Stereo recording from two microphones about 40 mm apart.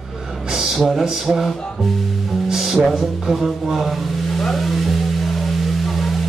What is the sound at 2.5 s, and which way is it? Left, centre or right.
Music, centre.